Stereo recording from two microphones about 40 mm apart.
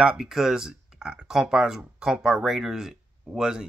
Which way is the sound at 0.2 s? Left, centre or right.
Centre.